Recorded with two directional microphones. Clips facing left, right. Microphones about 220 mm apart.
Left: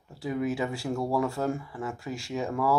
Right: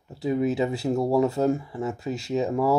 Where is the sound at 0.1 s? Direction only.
20° right (ahead or behind).